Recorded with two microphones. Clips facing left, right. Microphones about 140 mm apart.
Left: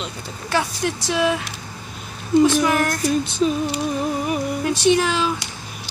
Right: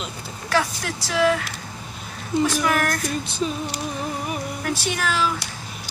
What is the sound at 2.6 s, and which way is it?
Speech, 25° left (ahead or behind).